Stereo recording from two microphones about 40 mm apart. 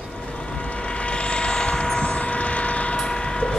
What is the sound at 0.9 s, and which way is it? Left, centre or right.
Vehicle, left.